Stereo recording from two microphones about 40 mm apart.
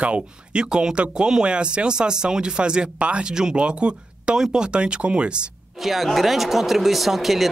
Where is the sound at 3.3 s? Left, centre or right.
Centre.